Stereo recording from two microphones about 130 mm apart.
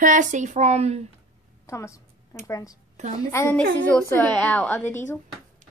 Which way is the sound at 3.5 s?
10° left (ahead or behind).